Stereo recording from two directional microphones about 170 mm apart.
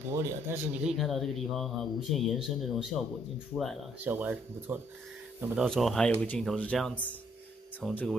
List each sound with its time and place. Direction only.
0.1 s speech: 15° right (ahead or behind)
0.8 s speech: centre (ahead or behind)
3.5 s speech: 10° left (ahead or behind)
4.0 s speech: 10° right (ahead or behind)
5.6 s speech: centre (ahead or behind)